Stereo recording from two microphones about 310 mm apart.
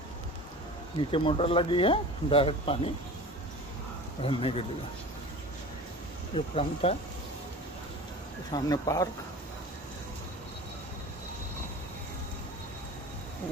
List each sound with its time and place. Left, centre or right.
1.1 s speech: centre
4.2 s speech: centre
6.3 s speech: centre
8.5 s speech: centre